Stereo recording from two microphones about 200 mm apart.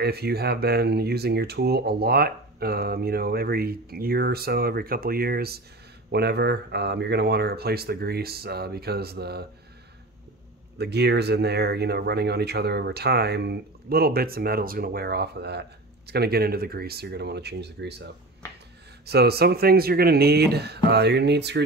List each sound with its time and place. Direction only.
0.0 s speech: 50° right (ahead or behind)
10.8 s speech: 55° right (ahead or behind)
19.0 s speech: 55° right (ahead or behind)